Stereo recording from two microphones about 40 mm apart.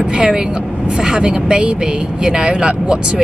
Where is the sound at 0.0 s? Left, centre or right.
Centre.